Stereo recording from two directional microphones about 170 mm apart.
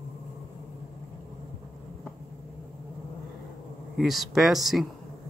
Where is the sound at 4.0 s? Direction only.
Centre (ahead or behind).